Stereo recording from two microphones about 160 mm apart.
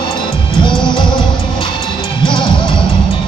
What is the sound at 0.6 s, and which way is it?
Music, 30° left (ahead or behind).